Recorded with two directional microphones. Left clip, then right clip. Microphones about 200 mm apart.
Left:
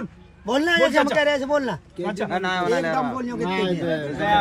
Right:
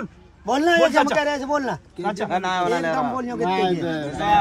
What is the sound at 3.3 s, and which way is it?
A man's voice, 30° right (ahead or behind).